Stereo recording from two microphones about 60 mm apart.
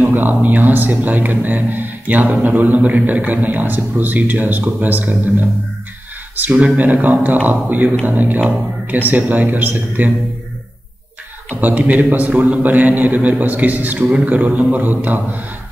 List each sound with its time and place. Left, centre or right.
0.0 s a man's voice: right
6.5 s a man's voice: right
11.6 s a man's voice: right